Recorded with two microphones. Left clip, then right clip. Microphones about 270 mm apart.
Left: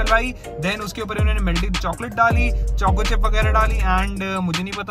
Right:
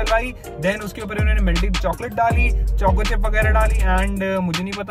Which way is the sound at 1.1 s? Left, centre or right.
Centre.